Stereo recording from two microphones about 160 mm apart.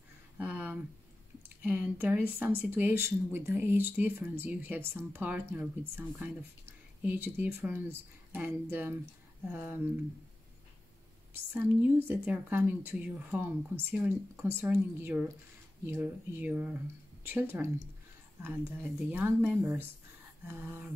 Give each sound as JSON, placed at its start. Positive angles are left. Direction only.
{"t": 0.4, "sound": "a sound", "side_deg": -10}
{"t": 1.6, "sound": "speech", "side_deg": -10}
{"t": 11.3, "sound": "speech", "side_deg": -15}
{"t": 19.0, "sound": "speech", "side_deg": -10}